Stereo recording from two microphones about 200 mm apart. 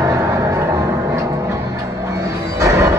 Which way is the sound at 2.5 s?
15° right (ahead or behind).